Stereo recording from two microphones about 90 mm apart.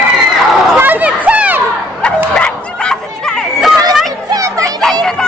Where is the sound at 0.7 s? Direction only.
20° right (ahead or behind).